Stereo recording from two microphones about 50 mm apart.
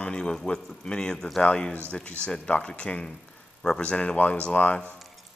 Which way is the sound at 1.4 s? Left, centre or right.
Left.